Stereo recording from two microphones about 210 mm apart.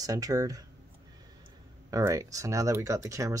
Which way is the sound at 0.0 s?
15° right (ahead or behind).